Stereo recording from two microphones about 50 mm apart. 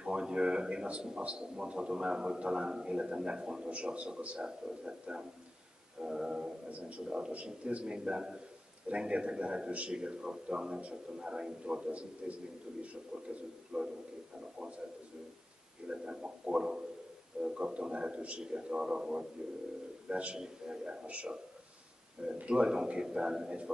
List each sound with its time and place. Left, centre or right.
0.0 s a sound: centre
1.2 s a man's voice: right
15.9 s a man's voice: centre
20.1 s a man's voice: right
20.3 s a man's voice: centre